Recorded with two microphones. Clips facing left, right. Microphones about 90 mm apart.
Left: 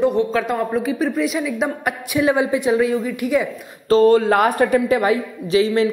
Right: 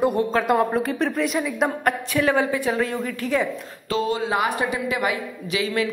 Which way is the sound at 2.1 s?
15° left (ahead or behind).